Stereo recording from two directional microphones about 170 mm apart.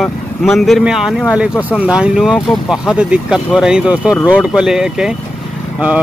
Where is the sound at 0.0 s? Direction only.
Centre (ahead or behind).